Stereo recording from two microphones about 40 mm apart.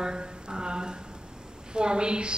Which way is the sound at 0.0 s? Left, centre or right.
Centre.